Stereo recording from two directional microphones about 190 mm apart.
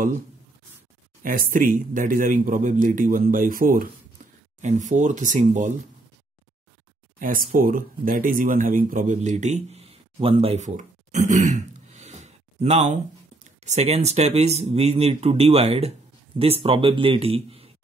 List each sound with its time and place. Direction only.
1.2 s speech: 45° right (ahead or behind)
7.2 s a man's voice: 45° right (ahead or behind); by 17.8 s 30° right (ahead or behind)